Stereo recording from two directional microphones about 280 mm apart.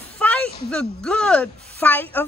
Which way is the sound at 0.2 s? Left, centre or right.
Centre.